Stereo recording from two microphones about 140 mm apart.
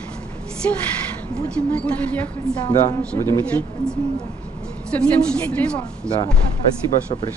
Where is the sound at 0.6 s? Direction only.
10° left (ahead or behind).